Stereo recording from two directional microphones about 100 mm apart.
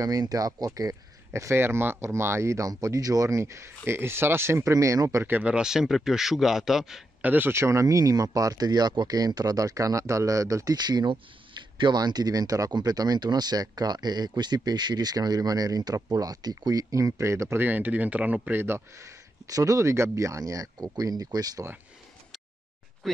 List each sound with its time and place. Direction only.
0.0 s speech: 40° right (ahead or behind)
5.2 s speech: 20° right (ahead or behind)
5.5 s a man's voice: 5° right (ahead or behind)
7.2 s speech: 20° right (ahead or behind); by 21.6 s 40° right (ahead or behind)
23.0 s speech: 5° left (ahead or behind)